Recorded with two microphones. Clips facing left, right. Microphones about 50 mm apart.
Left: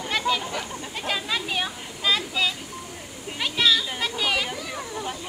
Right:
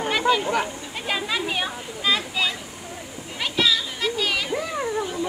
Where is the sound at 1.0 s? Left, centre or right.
Centre.